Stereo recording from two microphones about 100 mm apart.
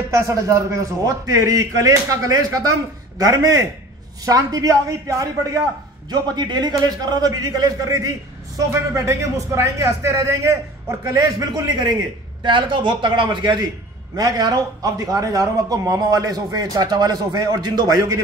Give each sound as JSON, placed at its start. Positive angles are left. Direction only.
{"t": 0.1, "sound": "a man's voice", "side_deg": -35}
{"t": 6.3, "sound": "a man's voice", "side_deg": -45}
{"t": 12.4, "sound": "a man's voice", "side_deg": -55}